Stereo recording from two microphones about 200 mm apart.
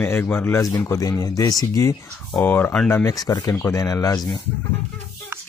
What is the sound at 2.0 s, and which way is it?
Speech, 5° left (ahead or behind).